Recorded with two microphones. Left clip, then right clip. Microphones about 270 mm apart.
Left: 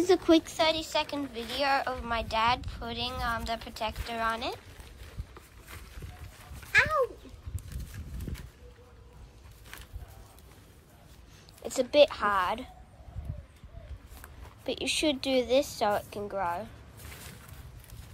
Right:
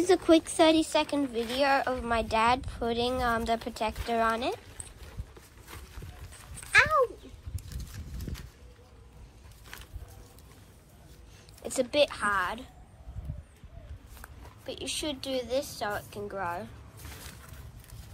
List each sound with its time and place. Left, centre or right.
0.0 s speech: centre
6.7 s a sound: centre
11.6 s speech: centre
14.7 s speech: centre